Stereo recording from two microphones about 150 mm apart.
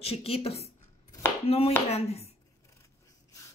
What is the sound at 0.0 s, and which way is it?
A woman's voice, 40° left (ahead or behind).